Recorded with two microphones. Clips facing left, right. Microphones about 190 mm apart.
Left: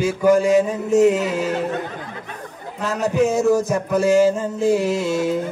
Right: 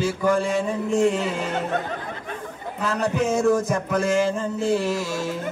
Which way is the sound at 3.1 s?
Centre (ahead or behind).